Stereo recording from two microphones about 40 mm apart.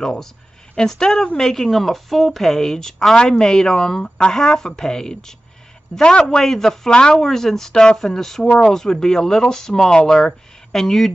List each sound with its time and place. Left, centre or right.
0.0 s speech: centre
6.9 s speech: left
7.2 s speech: centre